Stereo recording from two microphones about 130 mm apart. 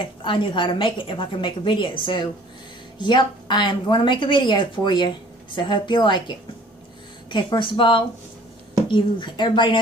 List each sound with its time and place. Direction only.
0.0 s a woman's voice: 40° left (ahead or behind)